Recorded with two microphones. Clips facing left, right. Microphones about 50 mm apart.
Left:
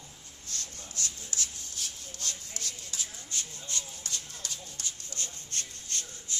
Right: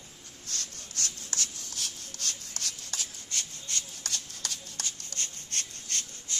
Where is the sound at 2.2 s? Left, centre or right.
Right.